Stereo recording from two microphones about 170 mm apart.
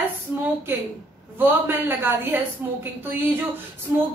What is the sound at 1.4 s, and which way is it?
A woman's voice, 10° right (ahead or behind).